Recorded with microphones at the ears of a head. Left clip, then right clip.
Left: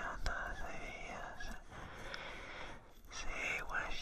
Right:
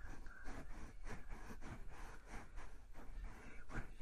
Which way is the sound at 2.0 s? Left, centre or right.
Left.